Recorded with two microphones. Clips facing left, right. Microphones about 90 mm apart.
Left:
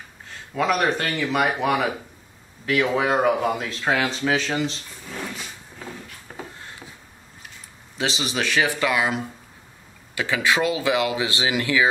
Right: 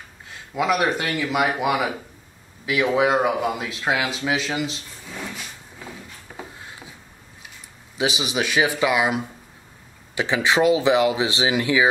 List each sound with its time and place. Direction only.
0.6 s speech: 10° right (ahead or behind)
6.3 s a sound: 5° left (ahead or behind)
8.0 s speech: 15° right (ahead or behind)